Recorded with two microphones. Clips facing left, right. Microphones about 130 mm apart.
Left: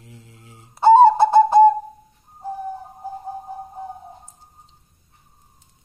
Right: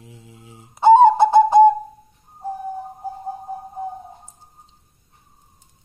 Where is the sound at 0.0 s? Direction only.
20° right (ahead or behind).